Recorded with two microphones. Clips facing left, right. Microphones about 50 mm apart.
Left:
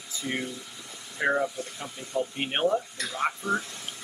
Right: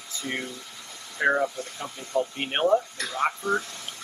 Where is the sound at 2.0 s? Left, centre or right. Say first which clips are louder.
Right 3 dB; right.